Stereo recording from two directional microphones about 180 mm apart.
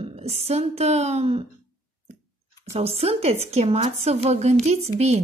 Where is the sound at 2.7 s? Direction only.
35° right (ahead or behind).